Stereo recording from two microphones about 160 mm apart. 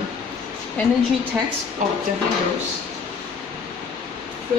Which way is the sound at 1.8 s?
50° right (ahead or behind).